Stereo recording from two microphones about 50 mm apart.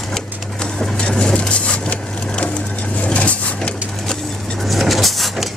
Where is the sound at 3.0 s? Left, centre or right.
Left.